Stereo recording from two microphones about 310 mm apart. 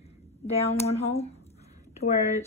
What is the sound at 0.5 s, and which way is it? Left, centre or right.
A woman's voice, centre.